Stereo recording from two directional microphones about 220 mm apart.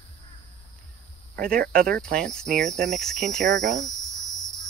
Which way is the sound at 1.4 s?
40° right (ahead or behind).